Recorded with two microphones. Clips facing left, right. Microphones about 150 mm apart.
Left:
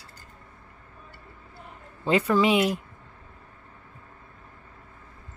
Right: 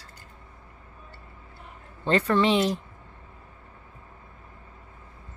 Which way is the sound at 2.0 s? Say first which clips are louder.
Left 1 dB; 5° left (ahead or behind).